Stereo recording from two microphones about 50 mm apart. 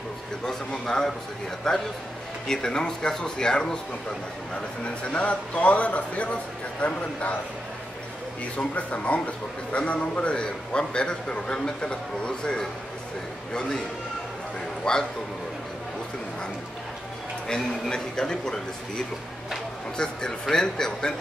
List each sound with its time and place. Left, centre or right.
0.5 s a man's voice: centre
4.8 s speech: left
8.5 s a man's voice: left
14.9 s a man's voice: centre
17.8 s a man's voice: centre